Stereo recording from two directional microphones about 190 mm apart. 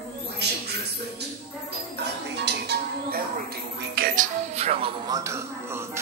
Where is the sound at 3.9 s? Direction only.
50° right (ahead or behind).